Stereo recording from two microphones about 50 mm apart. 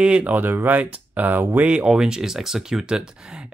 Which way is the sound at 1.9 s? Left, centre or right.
Centre.